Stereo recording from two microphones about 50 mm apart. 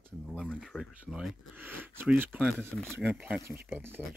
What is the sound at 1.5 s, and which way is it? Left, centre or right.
Speech, right.